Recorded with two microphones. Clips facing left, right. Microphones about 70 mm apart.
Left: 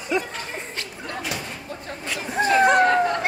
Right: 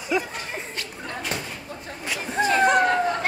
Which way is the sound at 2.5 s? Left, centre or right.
Left.